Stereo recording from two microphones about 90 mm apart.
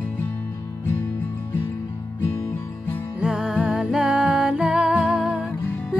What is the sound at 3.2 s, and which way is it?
Music, 5° right (ahead or behind).